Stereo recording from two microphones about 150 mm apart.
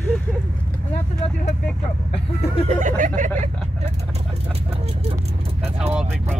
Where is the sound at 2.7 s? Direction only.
55° right (ahead or behind).